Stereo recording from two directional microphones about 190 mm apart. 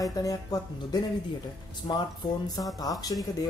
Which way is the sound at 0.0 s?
20° left (ahead or behind).